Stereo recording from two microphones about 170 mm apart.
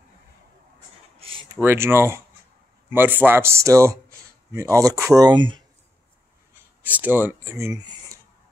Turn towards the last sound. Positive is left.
turn(degrees=-15)  # may be behind; listen again after turning